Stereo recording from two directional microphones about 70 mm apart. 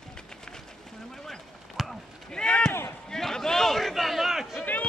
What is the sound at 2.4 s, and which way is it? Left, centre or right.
A man's voice, centre.